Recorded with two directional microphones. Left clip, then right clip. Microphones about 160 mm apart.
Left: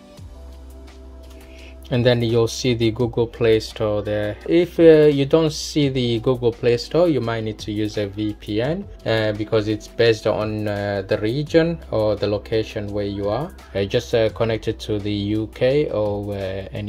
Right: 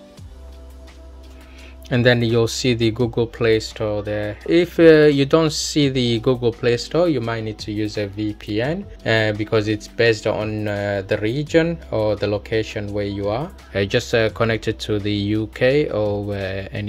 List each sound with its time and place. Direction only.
1.9 s speech: 15° right (ahead or behind)
4.5 s speech: 25° right (ahead or behind)
9.0 s speech: 30° right (ahead or behind)
9.9 s speech: 10° right (ahead or behind)
13.7 s speech: 25° right (ahead or behind)